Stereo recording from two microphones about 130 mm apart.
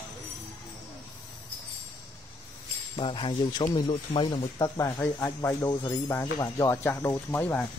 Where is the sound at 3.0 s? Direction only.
40° left (ahead or behind).